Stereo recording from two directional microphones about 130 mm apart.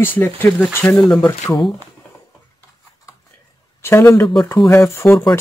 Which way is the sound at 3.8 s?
20° left (ahead or behind).